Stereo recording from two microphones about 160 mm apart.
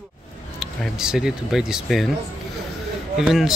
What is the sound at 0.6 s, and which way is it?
Speech, 5° right (ahead or behind).